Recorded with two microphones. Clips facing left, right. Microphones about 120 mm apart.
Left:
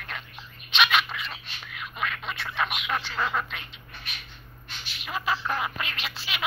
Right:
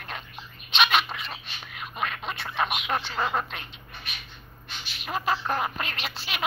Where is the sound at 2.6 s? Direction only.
20° right (ahead or behind).